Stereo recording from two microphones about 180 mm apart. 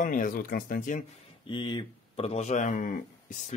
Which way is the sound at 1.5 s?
25° left (ahead or behind).